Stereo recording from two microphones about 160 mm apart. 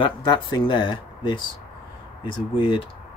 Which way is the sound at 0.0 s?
30° left (ahead or behind).